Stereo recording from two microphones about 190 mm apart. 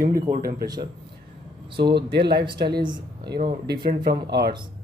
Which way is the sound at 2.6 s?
60° right (ahead or behind).